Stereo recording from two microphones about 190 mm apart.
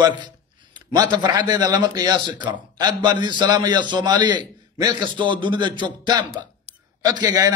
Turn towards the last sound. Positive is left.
turn(degrees=-20)  # may be behind; listen again after turning